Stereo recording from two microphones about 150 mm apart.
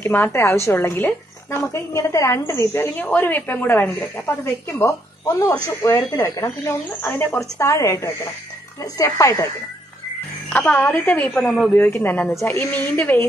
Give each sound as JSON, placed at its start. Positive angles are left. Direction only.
{"t": 0.0, "sound": "a woman's voice", "side_deg": 15}
{"t": 10.5, "sound": "a woman's voice", "side_deg": 15}